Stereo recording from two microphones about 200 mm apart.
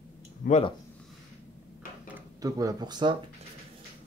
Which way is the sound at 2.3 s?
20° right (ahead or behind).